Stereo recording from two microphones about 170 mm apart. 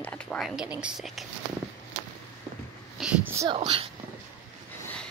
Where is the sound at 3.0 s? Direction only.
10° right (ahead or behind).